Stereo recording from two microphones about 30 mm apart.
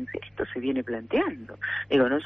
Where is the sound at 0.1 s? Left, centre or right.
Centre.